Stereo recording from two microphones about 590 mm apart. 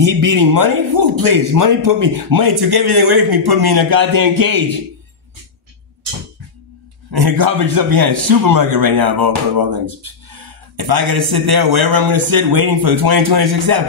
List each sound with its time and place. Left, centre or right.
0.0 s a man's voice: right
7.1 s a man's voice: right
10.8 s a man's voice: right